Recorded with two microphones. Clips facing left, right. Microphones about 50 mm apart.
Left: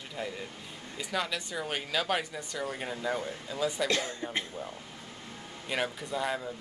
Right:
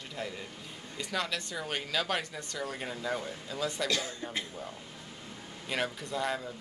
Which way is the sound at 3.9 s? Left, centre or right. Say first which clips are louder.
Left 2 dB; left.